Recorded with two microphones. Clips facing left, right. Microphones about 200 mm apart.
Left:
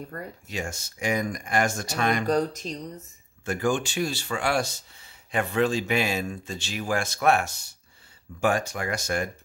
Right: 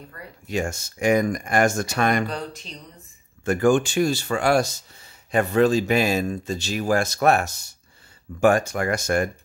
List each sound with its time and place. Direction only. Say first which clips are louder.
0.1 s speech: left 5 dB; 45° left (ahead or behind)
0.5 s speech: right 10 dB; 50° right (ahead or behind)
2.2 s speech: left 7 dB; 45° left (ahead or behind)
3.4 s speech: right 7 dB; 50° right (ahead or behind)